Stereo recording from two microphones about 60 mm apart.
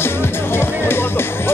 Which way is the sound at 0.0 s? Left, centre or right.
Left.